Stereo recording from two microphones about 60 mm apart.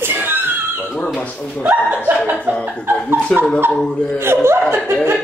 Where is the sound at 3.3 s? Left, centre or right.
Centre.